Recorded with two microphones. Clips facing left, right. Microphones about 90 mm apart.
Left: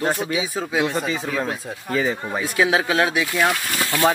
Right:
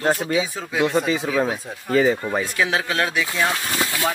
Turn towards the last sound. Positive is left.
turn(degrees=-15)  # may be behind; listen again after turning